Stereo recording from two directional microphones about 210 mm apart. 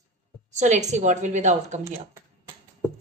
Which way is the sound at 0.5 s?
35° right (ahead or behind).